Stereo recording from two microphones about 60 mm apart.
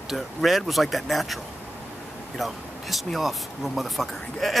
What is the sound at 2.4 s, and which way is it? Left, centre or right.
Speech, centre.